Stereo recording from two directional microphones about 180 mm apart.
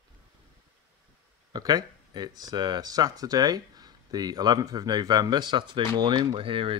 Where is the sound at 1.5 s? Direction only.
20° right (ahead or behind).